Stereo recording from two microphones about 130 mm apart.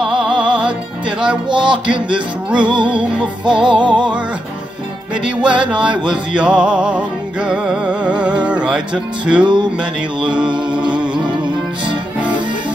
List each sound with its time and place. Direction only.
0.0 s music: 5° right (ahead or behind)
1.5 s music: 40° right (ahead or behind)
1.9 s music: 10° right (ahead or behind)
2.6 s music: 35° right (ahead or behind)
2.9 s music: 10° right (ahead or behind)
3.4 s music: 35° right (ahead or behind)
5.1 s music: 10° right (ahead or behind)